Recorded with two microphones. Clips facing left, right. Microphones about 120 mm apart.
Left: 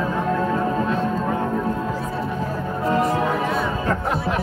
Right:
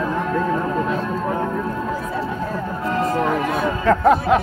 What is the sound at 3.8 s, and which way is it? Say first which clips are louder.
Music: right 7 dB; 90° right.